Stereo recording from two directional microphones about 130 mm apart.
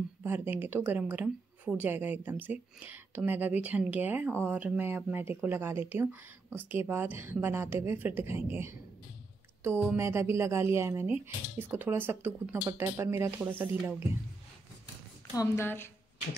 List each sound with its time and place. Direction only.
0.2 s speech: 15° right (ahead or behind)
15.3 s a woman's voice: 20° left (ahead or behind)